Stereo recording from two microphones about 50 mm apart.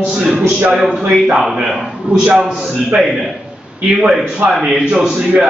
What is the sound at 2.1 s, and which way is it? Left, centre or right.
Speech, right.